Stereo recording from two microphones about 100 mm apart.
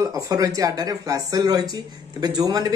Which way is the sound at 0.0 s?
35° right (ahead or behind).